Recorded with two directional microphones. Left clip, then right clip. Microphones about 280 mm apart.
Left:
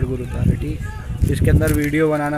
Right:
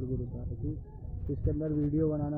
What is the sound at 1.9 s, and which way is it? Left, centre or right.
Speech, left.